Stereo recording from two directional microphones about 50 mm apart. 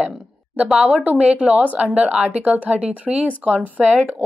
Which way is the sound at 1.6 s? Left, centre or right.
Right.